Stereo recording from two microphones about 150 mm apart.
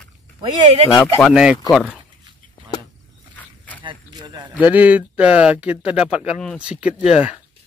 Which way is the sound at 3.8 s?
30° right (ahead or behind).